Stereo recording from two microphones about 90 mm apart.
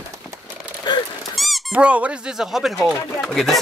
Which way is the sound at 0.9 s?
55° left (ahead or behind).